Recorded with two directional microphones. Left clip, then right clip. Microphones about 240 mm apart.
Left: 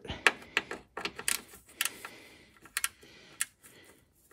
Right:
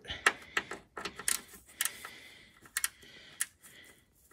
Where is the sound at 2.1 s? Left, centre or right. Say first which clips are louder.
Even; left.